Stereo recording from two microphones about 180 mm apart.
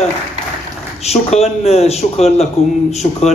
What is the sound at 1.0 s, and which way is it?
A man's voice, 35° left (ahead or behind).